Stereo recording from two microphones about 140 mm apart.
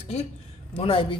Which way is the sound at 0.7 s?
40° left (ahead or behind).